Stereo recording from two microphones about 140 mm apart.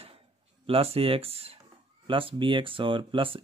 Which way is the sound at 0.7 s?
45° right (ahead or behind).